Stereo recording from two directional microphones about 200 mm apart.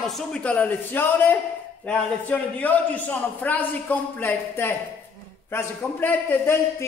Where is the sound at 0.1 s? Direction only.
5° left (ahead or behind).